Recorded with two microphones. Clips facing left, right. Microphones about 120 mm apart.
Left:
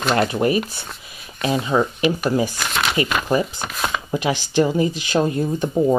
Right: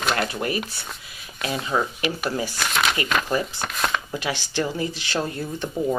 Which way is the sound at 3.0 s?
10° left (ahead or behind).